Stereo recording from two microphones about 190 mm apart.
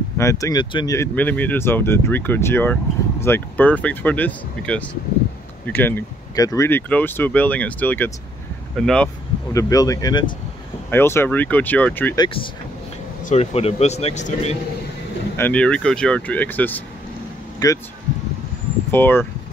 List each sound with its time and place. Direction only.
0.2 s speech: 15° left (ahead or behind)
9.5 s speech: 15° left (ahead or behind)
13.2 s speech: 35° left (ahead or behind)
15.3 s speech: 10° left (ahead or behind)
17.6 s speech: 20° left (ahead or behind)
18.9 s speech: 10° left (ahead or behind)